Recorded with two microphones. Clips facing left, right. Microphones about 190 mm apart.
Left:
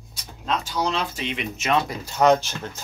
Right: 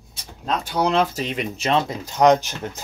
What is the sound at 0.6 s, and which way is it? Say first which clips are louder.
Speech: right 9 dB; 60° right (ahead or behind).